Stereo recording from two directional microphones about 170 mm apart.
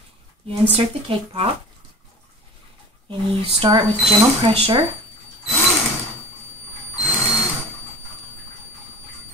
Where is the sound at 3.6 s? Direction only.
30° right (ahead or behind).